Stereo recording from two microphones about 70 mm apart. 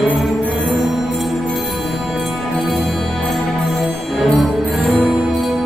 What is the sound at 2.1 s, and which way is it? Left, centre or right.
Music, centre.